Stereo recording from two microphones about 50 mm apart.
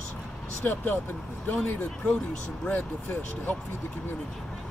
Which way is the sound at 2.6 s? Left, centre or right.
Left.